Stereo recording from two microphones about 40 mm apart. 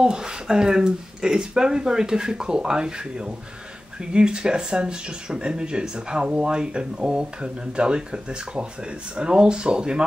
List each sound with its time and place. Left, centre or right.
0.0 s speech: right